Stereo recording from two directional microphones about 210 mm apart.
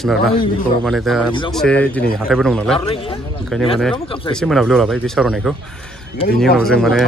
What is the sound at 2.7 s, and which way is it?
Speech, 25° left (ahead or behind).